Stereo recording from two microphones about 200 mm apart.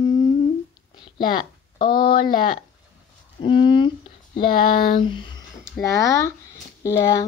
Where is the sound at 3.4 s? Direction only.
25° left (ahead or behind).